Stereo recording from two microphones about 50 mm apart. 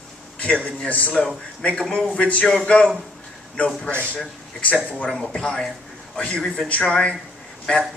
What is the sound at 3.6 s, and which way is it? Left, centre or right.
Speech, left.